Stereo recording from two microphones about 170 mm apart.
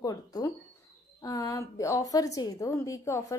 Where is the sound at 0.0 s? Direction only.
20° left (ahead or behind).